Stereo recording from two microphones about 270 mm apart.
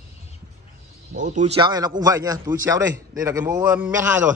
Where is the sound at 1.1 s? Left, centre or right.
Right; by 4.2 s centre.